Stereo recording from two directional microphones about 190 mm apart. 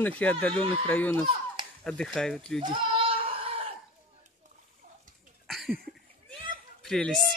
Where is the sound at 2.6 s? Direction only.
25° right (ahead or behind).